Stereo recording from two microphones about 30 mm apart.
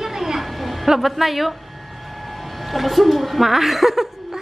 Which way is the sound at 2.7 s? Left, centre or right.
Centre.